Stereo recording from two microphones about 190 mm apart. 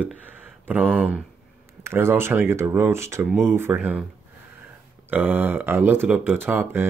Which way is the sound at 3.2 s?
Centre (ahead or behind).